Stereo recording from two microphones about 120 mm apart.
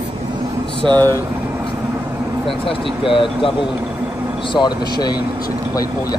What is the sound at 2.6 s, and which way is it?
Speech, 45° left (ahead or behind).